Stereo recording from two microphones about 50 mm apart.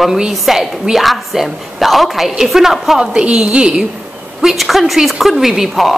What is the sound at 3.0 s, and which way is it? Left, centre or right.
Speech, centre.